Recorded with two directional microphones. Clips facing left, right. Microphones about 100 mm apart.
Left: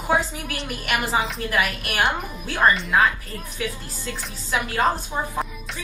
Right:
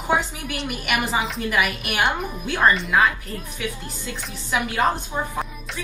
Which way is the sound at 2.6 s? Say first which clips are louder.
Even; centre (ahead or behind).